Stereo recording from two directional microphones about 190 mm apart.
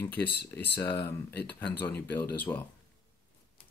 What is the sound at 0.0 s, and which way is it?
Speech, 10° left (ahead or behind).